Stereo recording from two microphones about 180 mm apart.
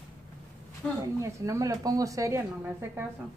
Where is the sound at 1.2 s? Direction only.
15° right (ahead or behind).